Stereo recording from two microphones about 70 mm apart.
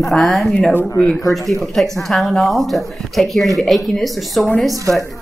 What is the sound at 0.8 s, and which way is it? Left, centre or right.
Speech, centre.